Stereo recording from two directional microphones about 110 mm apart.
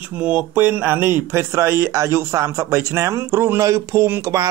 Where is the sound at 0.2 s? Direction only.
15° right (ahead or behind).